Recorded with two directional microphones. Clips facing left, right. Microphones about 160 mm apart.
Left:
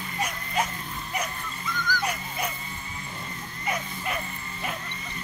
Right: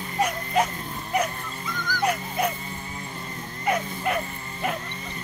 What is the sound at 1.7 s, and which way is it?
Music, 30° right (ahead or behind).